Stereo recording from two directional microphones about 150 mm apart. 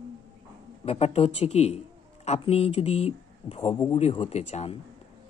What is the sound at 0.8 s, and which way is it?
Speech, 45° left (ahead or behind).